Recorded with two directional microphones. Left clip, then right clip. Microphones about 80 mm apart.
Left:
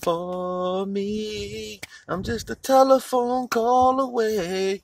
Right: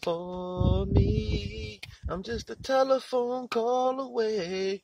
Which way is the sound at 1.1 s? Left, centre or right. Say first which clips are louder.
Left 4 dB; left.